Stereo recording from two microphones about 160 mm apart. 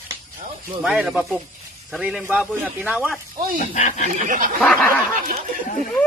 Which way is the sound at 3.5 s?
50° left (ahead or behind).